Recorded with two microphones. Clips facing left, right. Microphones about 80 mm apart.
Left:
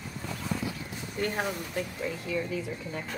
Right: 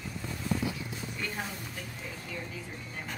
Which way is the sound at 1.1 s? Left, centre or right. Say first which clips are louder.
Left 9 dB; left.